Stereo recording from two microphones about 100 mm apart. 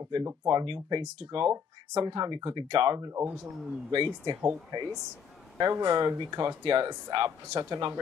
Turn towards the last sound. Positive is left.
turn(degrees=-40)  # may be behind; listen again after turning